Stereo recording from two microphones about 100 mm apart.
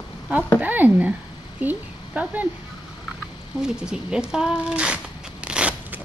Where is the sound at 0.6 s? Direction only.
15° right (ahead or behind).